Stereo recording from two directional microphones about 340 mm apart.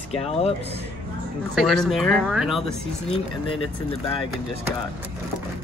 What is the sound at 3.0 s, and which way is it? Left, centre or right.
Speech, centre.